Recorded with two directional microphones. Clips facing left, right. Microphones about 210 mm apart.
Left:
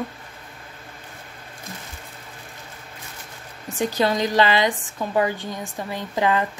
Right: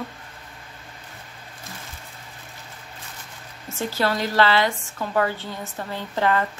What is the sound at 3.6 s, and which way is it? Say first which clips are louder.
A woman's voice: left 3 dB; 15° left (ahead or behind).